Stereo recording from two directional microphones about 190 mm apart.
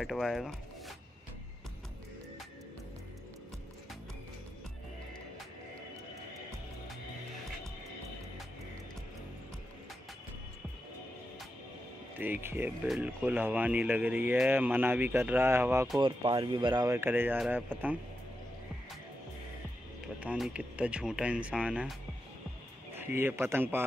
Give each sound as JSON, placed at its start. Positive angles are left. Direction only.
{"t": 0.0, "sound": "speech", "side_deg": 0}
{"t": 12.2, "sound": "speech", "side_deg": -10}
{"t": 16.0, "sound": "speech", "side_deg": -25}
{"t": 20.2, "sound": "speech", "side_deg": -5}
{"t": 22.9, "sound": "speech", "side_deg": -10}